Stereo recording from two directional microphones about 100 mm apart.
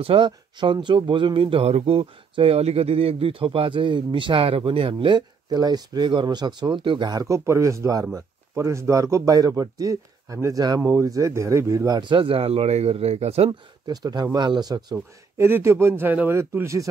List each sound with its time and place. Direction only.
0.0 s speech: 60° right (ahead or behind); by 12.0 s 35° right (ahead or behind)
12.0 s speech: 55° right (ahead or behind); by 13.5 s 90° right
13.5 s speech: 45° right (ahead or behind)
15.3 s speech: 25° right (ahead or behind)